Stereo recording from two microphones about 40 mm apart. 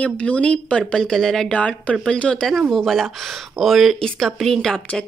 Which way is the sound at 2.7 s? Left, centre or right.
Centre.